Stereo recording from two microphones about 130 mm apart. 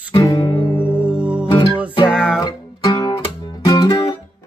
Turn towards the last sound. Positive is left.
turn(degrees=35)  # may be behind; listen again after turning